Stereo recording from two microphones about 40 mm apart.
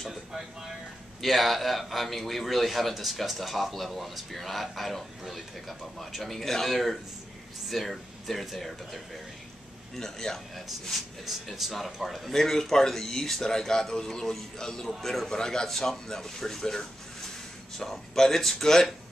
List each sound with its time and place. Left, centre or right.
1.2 s a man's voice: centre